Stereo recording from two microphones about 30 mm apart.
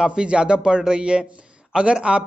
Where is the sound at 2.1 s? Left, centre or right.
Right.